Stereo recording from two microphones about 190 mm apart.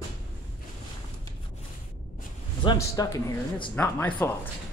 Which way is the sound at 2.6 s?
20° left (ahead or behind).